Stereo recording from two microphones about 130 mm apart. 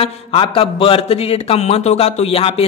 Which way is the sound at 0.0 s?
45° left (ahead or behind).